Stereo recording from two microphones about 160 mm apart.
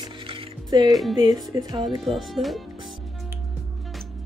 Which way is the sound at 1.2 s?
25° right (ahead or behind).